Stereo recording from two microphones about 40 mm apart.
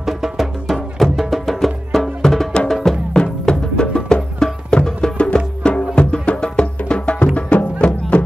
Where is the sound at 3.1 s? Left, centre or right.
Left.